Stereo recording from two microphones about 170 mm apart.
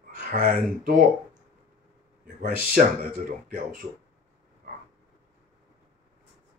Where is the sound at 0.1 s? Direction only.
50° right (ahead or behind).